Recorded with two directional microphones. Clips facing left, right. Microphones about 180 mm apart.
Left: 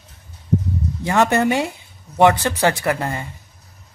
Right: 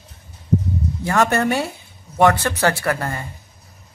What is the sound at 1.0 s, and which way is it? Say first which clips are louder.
Speech: left 2 dB; 20° left (ahead or behind).